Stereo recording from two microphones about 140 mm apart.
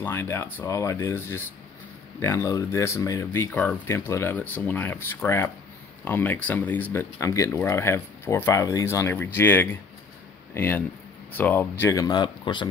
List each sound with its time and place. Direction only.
0.0 s speech: 15° left (ahead or behind); by 12.6 s 35° left (ahead or behind)